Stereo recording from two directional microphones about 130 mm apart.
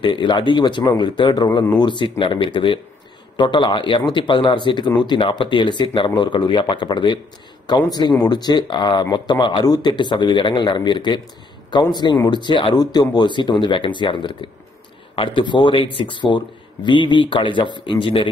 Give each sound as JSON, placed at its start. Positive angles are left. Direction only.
{"t": 0.0, "sound": "speech", "side_deg": 35}